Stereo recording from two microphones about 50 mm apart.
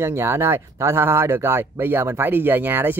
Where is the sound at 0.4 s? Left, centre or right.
Right.